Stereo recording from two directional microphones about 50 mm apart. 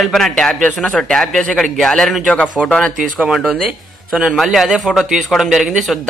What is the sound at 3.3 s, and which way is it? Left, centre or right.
Speech, centre.